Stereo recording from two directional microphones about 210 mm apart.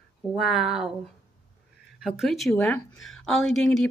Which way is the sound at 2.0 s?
Centre (ahead or behind).